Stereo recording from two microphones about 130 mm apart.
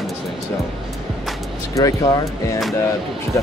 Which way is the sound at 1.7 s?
25° left (ahead or behind).